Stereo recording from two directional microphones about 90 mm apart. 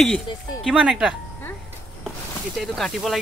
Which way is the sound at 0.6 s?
10° right (ahead or behind).